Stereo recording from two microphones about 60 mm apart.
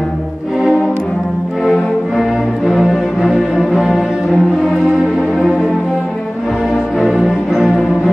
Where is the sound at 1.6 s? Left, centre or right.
Centre.